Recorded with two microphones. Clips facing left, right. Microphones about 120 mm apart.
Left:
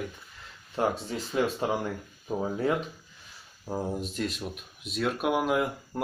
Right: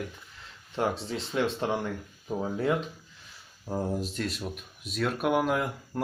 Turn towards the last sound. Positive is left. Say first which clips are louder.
# left 2 dB
turn(degrees=5)  # may be behind; listen again after turning